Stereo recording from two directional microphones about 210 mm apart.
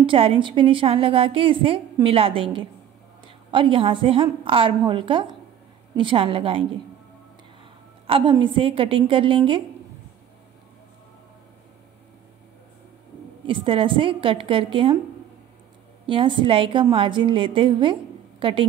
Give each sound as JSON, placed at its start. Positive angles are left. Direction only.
{"t": 0.0, "sound": "a woman's voice", "side_deg": -25}
{"t": 8.1, "sound": "a woman's voice", "side_deg": -25}
{"t": 13.5, "sound": "a woman's voice", "side_deg": -25}
{"t": 16.1, "sound": "a woman's voice", "side_deg": -25}